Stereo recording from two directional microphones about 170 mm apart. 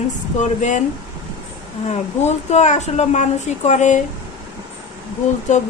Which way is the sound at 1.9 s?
40° left (ahead or behind).